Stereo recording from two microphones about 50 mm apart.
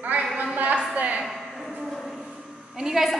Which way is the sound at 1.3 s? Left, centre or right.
Centre.